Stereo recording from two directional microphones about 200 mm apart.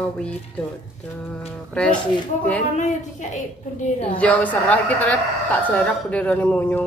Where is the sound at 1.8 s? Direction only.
5° left (ahead or behind).